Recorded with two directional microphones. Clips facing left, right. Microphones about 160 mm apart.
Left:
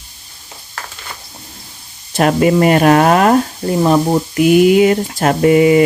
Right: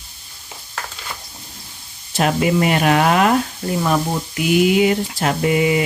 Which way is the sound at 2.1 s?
50° left (ahead or behind).